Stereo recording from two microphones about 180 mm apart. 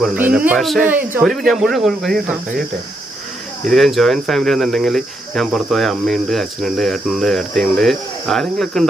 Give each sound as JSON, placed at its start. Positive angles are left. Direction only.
{"t": 0.1, "sound": "speech", "side_deg": -10}
{"t": 0.8, "sound": "speech", "side_deg": -10}
{"t": 3.6, "sound": "speech", "side_deg": 0}